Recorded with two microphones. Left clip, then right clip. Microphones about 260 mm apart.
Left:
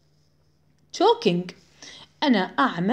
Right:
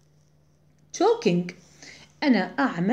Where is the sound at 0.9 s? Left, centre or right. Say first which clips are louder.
Left 2 dB; left.